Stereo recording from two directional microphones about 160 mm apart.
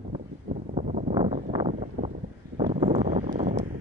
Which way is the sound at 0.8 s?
55° right (ahead or behind).